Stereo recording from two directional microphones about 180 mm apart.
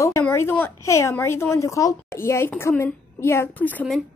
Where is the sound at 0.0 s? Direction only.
15° left (ahead or behind).